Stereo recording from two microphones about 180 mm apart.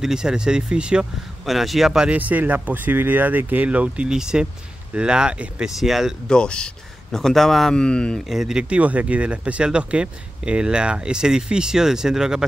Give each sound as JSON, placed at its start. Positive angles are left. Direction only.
{"t": 0.0, "sound": "speech", "side_deg": -5}